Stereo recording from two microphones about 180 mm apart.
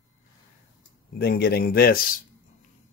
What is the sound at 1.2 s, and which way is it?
Speech, 60° left (ahead or behind).